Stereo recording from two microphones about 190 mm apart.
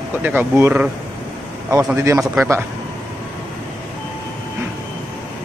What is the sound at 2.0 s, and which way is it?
Speech, 15° right (ahead or behind).